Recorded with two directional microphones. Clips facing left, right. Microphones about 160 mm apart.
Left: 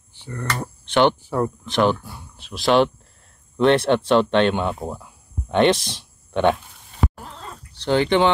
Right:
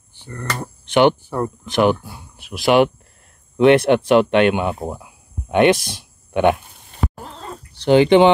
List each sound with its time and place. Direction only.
0.2 s speech: centre (ahead or behind)
0.8 s speech: 15° right (ahead or behind)
7.7 s speech: 15° right (ahead or behind)